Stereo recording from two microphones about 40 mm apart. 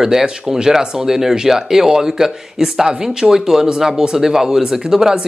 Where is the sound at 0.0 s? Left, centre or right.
Centre.